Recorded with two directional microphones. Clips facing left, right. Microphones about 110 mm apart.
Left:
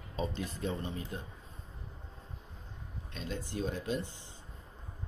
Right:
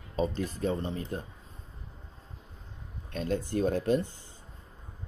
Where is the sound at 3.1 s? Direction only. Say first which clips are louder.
Right 9 dB; 50° right (ahead or behind).